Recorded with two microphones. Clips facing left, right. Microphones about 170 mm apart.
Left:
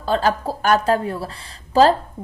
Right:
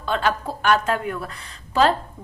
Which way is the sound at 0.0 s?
35° left (ahead or behind).